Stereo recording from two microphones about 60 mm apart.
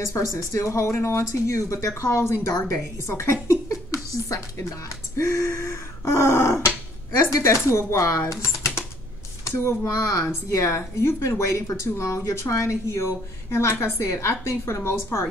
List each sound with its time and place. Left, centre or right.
0.0 s speech: left
7.2 s a woman's voice: left